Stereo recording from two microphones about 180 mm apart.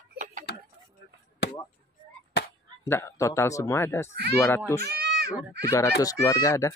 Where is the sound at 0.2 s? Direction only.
45° right (ahead or behind).